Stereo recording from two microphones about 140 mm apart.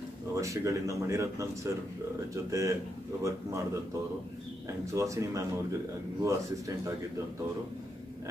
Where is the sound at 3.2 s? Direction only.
20° right (ahead or behind).